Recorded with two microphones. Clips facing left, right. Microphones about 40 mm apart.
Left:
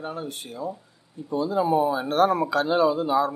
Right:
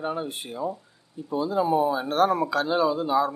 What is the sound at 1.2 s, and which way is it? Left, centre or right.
Speech, centre.